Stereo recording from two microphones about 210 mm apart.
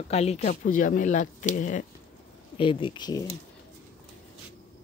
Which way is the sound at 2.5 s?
25° left (ahead or behind).